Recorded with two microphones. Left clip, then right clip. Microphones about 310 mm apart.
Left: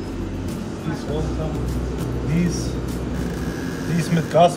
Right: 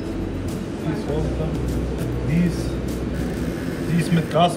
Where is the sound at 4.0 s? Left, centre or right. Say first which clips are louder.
Left 3 dB; left.